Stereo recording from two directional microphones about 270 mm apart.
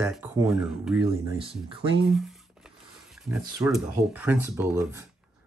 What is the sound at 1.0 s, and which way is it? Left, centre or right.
Speech, centre.